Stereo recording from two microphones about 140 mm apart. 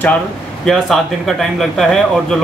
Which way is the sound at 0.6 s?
Centre (ahead or behind).